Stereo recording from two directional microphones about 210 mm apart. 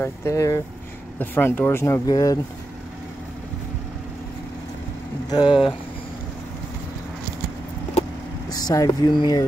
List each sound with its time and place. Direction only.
0.0 s speech: 15° left (ahead or behind)
5.3 s speech: 20° left (ahead or behind)
8.5 s speech: 20° left (ahead or behind)